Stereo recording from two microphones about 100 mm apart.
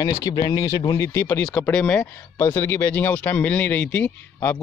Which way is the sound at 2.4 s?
20° left (ahead or behind).